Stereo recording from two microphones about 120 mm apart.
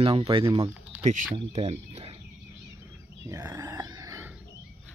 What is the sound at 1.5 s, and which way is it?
Speech, 60° right (ahead or behind).